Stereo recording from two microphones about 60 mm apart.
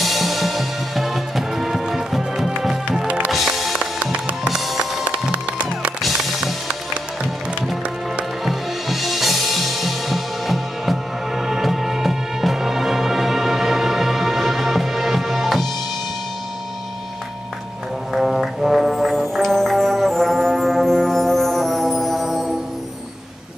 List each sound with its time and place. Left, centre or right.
0.0 s music: centre
4.0 s music: right
4.5 s music: centre
5.0 s music: centre
6.0 s music: centre
8.5 s music: centre
18.1 s music: centre